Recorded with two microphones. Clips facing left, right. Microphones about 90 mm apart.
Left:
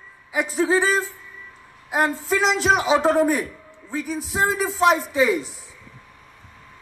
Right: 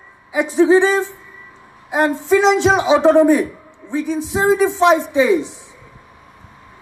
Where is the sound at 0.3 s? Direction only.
20° right (ahead or behind).